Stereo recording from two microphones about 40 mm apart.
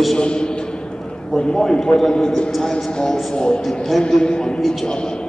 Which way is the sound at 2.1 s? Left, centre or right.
Left.